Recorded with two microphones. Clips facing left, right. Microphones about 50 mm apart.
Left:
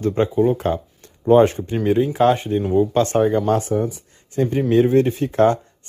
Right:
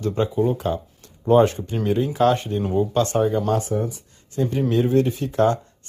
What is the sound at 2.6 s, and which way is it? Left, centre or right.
Speech, centre.